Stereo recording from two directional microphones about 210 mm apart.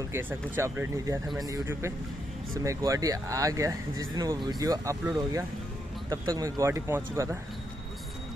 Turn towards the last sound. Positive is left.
turn(degrees=-15)  # may be behind; listen again after turning